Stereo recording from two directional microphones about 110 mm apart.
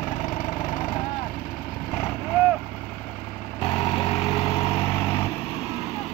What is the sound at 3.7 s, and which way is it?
Vehicle, 55° left (ahead or behind).